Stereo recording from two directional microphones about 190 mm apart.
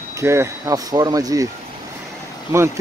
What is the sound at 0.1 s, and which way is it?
Speech, 15° right (ahead or behind).